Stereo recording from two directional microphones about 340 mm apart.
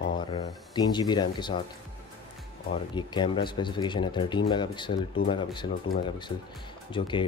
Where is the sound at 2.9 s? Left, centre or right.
Centre.